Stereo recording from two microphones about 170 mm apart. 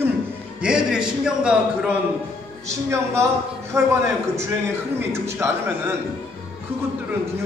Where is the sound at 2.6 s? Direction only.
15° right (ahead or behind).